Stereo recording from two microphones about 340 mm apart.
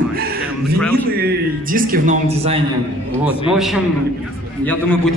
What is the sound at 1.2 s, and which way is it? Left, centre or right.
Speech, right.